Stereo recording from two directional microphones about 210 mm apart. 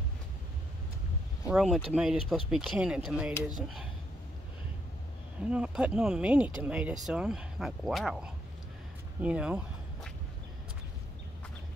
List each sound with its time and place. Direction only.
1.5 s speech: centre (ahead or behind)
5.5 s speech: 5° right (ahead or behind)